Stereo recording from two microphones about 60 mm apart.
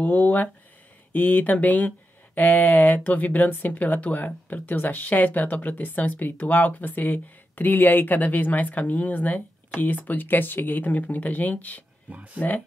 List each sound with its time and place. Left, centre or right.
0.0 s speech: left